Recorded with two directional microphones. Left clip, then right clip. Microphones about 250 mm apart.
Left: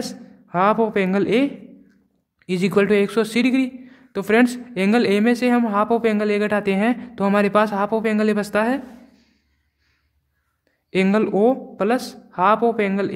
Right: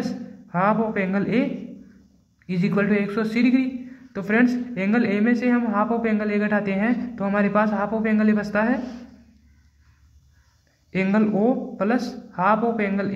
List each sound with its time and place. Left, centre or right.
0.0 s a man's voice: left
10.9 s a man's voice: left